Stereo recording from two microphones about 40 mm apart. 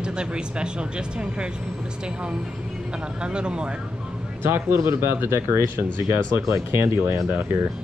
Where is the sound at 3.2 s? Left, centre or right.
Right.